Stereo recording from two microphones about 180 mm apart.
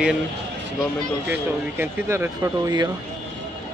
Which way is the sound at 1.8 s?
10° right (ahead or behind).